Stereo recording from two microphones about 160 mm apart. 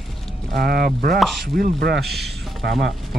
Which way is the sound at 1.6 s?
85° right.